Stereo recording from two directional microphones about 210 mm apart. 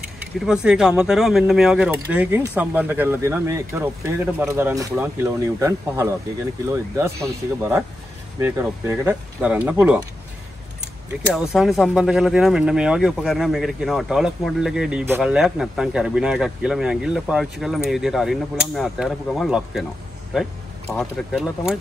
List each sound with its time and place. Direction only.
0.2 s speech: 5° right (ahead or behind)
8.4 s speech: 10° right (ahead or behind)
11.3 s speech: centre (ahead or behind)
20.9 s speech: 5° left (ahead or behind)